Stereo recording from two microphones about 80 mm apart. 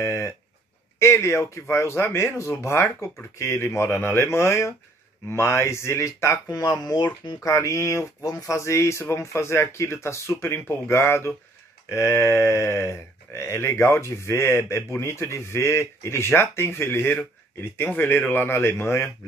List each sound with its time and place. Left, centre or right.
0.0 s a sound: left
0.9 s speech: left
6.5 s speech: left